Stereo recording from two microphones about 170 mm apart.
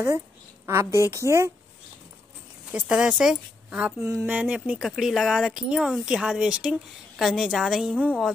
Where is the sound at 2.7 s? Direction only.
5° right (ahead or behind).